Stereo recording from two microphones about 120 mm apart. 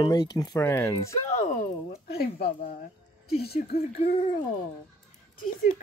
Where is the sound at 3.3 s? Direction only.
55° left (ahead or behind).